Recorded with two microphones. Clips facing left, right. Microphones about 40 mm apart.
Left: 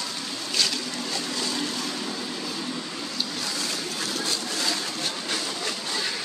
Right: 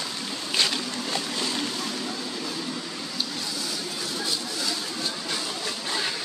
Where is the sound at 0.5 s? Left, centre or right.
Right.